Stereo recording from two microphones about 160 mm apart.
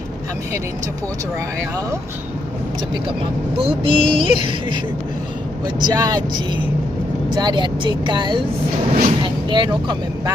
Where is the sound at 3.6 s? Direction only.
35° right (ahead or behind).